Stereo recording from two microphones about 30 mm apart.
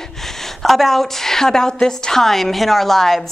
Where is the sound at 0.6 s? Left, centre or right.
Centre.